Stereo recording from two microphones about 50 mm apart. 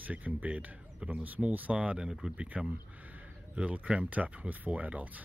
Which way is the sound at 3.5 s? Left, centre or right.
Right.